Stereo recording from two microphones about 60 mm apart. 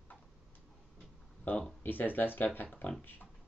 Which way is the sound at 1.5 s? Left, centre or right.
Left.